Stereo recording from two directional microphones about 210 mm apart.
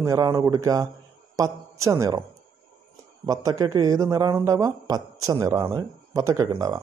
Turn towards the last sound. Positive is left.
turn(degrees=-15)  # may be behind; listen again after turning